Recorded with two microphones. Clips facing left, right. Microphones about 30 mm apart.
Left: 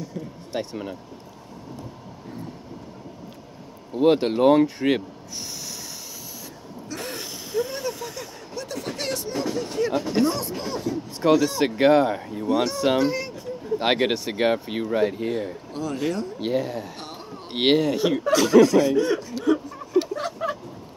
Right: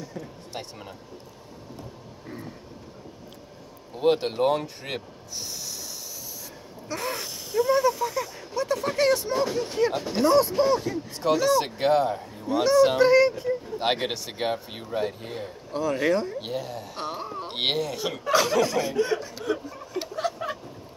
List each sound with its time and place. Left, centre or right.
3.9 s speech: centre
7.0 s a sound: centre
9.9 s speech: centre
11.3 s speech: centre
11.6 s speech: centre
12.6 s speech: centre
13.0 s speech: right
13.7 s speech: centre
15.7 s speech: centre
16.3 s speech: centre
16.9 s a sound: centre
17.6 s speech: centre
18.3 s speech: centre
18.7 s chuckle: centre